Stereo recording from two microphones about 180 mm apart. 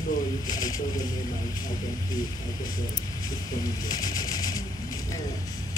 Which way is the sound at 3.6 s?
20° left (ahead or behind).